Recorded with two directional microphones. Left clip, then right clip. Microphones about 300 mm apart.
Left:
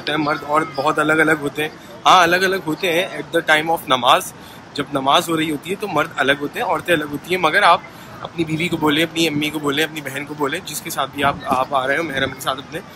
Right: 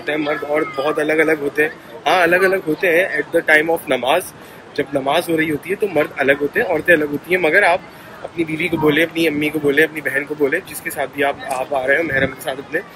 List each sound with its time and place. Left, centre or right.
0.1 s speech: centre